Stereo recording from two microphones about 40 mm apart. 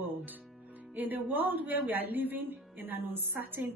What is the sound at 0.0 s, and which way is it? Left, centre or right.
Music, right.